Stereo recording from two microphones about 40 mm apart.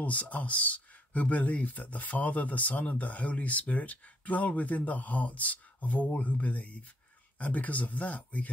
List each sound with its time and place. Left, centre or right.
0.0 s speech: left